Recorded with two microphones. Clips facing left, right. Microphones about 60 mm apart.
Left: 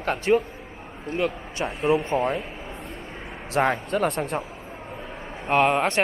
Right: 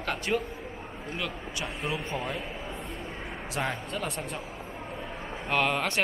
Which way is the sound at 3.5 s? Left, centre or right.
Left.